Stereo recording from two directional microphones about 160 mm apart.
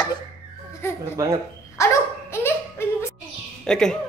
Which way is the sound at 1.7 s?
15° left (ahead or behind).